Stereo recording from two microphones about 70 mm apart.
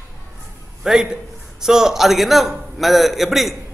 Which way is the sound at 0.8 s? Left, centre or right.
Centre.